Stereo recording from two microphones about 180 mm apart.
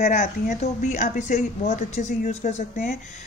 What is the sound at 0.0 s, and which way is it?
A man's voice, 40° left (ahead or behind).